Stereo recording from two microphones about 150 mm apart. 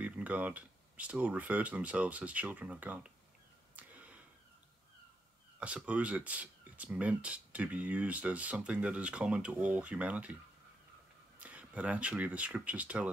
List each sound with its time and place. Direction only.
0.0 s speech: 10° right (ahead or behind)
3.7 s a sound: 10° right (ahead or behind)
5.6 s speech: 10° right (ahead or behind)
11.3 s speech: 10° right (ahead or behind)